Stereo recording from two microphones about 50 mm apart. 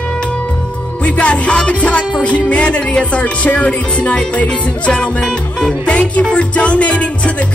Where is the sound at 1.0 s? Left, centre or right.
Left.